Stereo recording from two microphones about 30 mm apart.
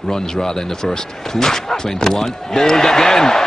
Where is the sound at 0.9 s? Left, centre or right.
Centre.